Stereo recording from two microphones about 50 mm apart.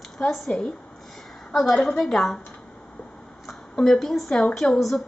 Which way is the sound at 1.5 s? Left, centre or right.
Centre.